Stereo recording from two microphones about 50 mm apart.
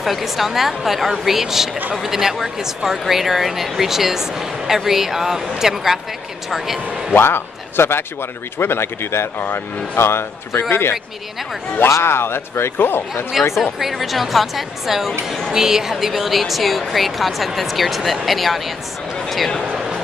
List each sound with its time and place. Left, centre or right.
0.0 s a woman's voice: centre
7.2 s speech: left
12.0 s speech: left
13.1 s a woman's voice: centre
19.7 s a sound: centre